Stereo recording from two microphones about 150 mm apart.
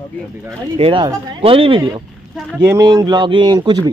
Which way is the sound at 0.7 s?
40° right (ahead or behind).